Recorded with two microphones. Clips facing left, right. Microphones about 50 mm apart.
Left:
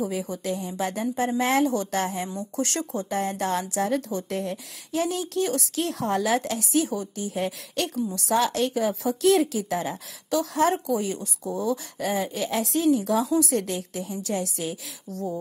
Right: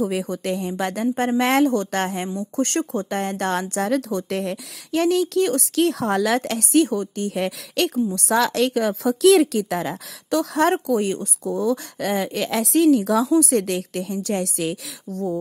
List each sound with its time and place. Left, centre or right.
0.2 s speech: right
3.9 s speech: right
8.4 s speech: right